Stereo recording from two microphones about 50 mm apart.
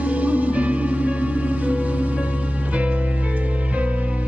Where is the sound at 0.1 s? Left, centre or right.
Right.